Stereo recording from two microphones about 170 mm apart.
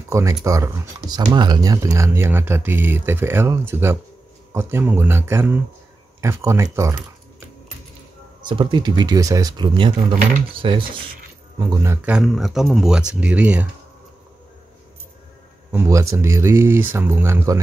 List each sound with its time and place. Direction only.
0.1 s speech: 20° right (ahead or behind)
8.5 s speech: 25° right (ahead or behind); by 13.7 s 5° right (ahead or behind)
15.7 s speech: 15° right (ahead or behind)